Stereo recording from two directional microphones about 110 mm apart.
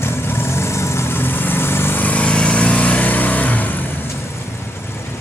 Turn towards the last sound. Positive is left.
turn(degrees=15)  # may be behind; listen again after turning